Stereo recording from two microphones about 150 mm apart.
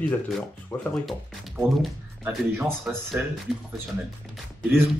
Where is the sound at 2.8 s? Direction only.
5° left (ahead or behind).